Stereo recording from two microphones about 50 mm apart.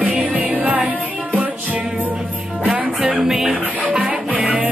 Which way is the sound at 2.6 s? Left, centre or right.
Right.